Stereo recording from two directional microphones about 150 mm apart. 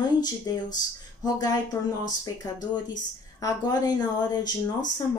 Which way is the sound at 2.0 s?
25° left (ahead or behind).